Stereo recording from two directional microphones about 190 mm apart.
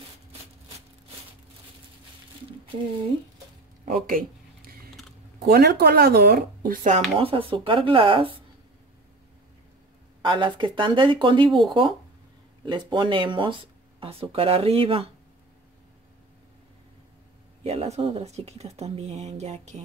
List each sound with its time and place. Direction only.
3.8 s a sound: 45° right (ahead or behind)
5.4 s speech: 55° right (ahead or behind); by 8.4 s 25° right (ahead or behind)
10.2 s speech: 25° right (ahead or behind)
12.6 s speech: 25° right (ahead or behind)
17.6 s speech: 30° right (ahead or behind)